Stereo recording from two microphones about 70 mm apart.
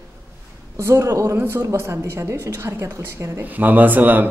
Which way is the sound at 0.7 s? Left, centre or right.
Right.